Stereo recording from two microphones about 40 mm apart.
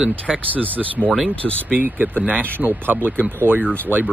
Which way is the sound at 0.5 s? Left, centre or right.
Right.